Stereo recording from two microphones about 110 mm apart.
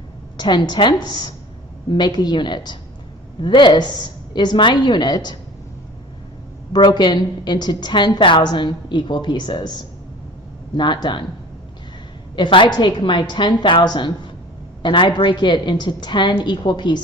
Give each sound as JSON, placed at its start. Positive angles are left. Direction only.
{"t": 0.4, "sound": "a woman's voice", "side_deg": 45}
{"t": 6.7, "sound": "a woman's voice", "side_deg": 40}
{"t": 12.4, "sound": "a woman's voice", "side_deg": 45}